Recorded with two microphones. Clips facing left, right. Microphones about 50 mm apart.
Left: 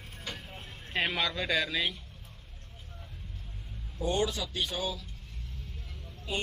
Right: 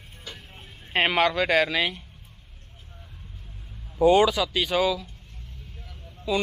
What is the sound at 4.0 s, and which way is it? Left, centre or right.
Speech, right.